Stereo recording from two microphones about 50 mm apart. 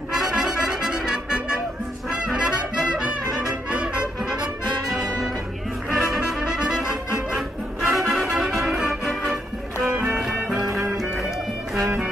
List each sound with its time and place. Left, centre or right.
0.1 s music: centre
2.0 s brass instrument: centre
3.7 s music: centre
4.9 s brass instrument: centre
5.9 s music: centre
7.3 s music: centre
8.3 s music: centre